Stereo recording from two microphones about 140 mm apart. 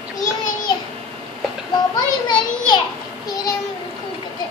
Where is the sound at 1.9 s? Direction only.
30° left (ahead or behind).